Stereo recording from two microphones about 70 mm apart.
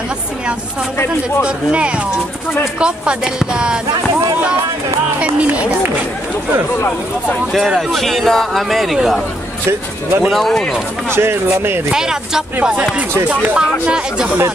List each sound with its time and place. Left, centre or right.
1.4 s speech: centre
5.2 s speech: centre
7.5 s speech: centre
9.7 s speech: right
10.3 s speech: centre
11.1 s speech: right
11.9 s speech: centre
12.5 s speech: centre